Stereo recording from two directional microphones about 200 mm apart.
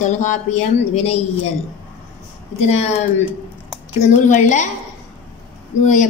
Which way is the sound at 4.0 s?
35° left (ahead or behind).